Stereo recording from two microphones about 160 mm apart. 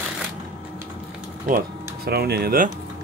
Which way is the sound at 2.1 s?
80° right.